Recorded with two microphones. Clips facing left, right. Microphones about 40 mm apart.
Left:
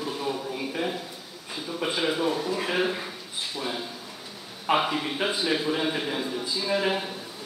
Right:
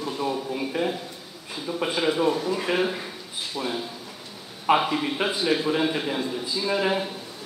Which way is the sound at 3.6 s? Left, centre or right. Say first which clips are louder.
Right 3 dB; right.